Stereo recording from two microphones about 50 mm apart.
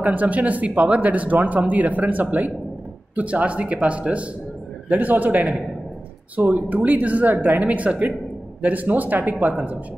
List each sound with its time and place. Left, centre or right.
0.0 s speech: right